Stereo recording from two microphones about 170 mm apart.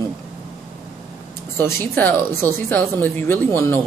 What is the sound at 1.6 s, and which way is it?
Speech, 15° left (ahead or behind).